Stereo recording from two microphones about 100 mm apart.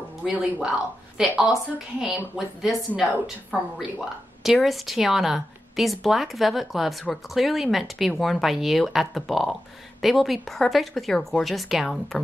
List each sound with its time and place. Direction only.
0.2 s a woman's voice: 10° right (ahead or behind)
4.4 s a woman's voice: centre (ahead or behind)